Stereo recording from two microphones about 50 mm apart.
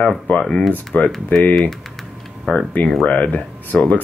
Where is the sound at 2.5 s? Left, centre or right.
Left.